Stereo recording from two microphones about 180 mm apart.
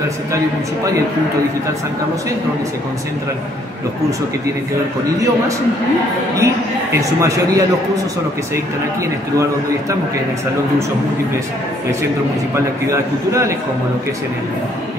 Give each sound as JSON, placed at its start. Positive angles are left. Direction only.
{"t": 6.3, "sound": "a man's voice", "side_deg": -15}
{"t": 12.9, "sound": "a man's voice", "side_deg": -15}